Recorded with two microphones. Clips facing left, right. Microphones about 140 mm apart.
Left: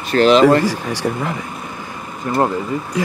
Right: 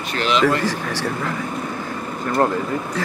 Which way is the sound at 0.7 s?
15° left (ahead or behind).